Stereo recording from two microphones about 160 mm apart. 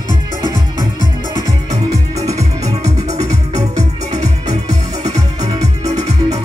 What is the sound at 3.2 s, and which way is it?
Music, 20° right (ahead or behind).